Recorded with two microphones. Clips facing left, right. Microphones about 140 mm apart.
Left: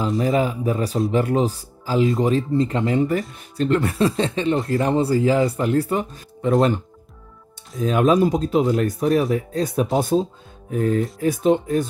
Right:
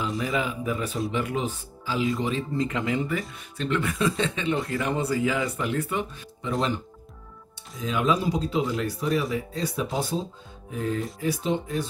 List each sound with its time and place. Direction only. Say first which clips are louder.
0.2 s speech: left 7 dB; 35° left (ahead or behind)
6.4 s speech: left 9 dB; 55° left (ahead or behind)
7.8 s speech: left 8 dB; 50° left (ahead or behind)